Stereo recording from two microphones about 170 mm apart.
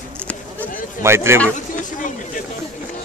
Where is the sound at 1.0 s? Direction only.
15° right (ahead or behind).